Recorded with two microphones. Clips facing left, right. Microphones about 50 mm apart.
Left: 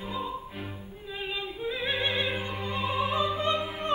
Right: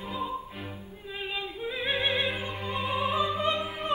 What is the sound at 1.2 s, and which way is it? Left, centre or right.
Yodeling, centre.